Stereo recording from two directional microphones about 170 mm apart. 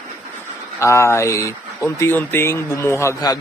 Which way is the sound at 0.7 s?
15° left (ahead or behind).